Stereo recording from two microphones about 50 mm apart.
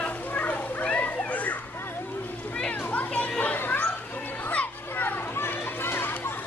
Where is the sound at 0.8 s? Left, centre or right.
Left.